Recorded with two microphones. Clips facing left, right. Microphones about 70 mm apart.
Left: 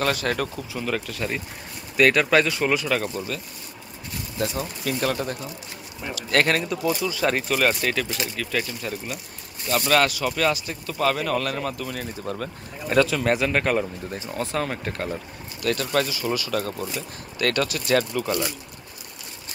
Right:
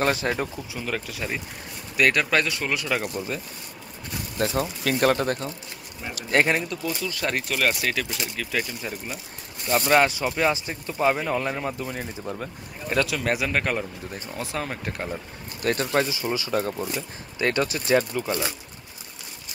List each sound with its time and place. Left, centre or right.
0.0 s speech: right
0.7 s speech: centre
4.4 s speech: right
6.3 s speech: centre
6.9 s speech: centre
9.7 s speech: centre
12.9 s speech: centre
15.6 s speech: right; by 18.3 s centre